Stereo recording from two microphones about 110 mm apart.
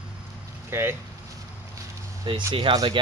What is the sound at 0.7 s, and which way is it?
Speech, 20° right (ahead or behind).